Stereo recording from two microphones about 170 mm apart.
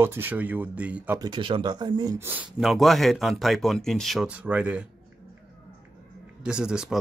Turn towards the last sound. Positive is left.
turn(degrees=-5)  # may be behind; listen again after turning